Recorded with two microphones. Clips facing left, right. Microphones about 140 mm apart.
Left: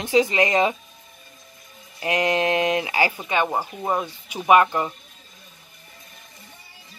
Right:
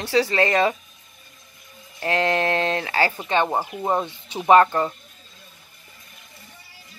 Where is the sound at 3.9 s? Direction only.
25° right (ahead or behind).